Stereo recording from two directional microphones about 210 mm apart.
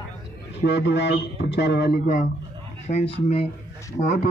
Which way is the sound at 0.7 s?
55° left (ahead or behind).